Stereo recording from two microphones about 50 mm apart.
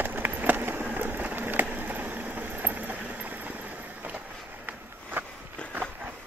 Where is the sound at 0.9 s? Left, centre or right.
Right.